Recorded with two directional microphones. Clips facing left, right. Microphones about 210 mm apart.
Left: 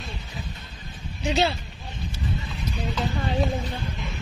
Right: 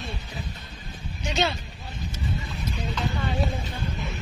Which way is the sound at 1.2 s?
35° left (ahead or behind).